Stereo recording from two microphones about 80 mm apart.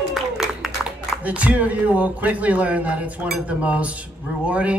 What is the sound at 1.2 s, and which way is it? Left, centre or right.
Speech, centre.